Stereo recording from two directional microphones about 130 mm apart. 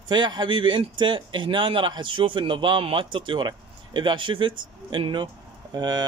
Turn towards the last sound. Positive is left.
turn(degrees=-35)  # may be behind; listen again after turning